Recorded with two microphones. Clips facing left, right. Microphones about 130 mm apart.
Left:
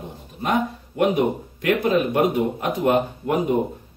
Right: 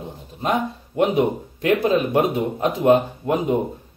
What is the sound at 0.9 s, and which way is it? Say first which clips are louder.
Speech: right 1 dB; 25° right (ahead or behind).